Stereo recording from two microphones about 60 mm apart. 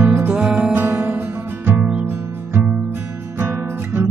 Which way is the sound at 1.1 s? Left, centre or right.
Right.